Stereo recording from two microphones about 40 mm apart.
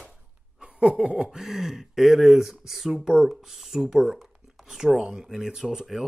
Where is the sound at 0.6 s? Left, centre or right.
Right.